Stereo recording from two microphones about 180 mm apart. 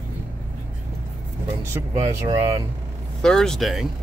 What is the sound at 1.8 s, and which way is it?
Speech, 15° right (ahead or behind).